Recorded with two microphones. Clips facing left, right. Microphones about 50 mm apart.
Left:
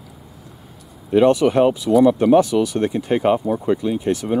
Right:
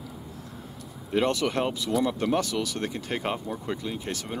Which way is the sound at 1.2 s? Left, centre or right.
Centre.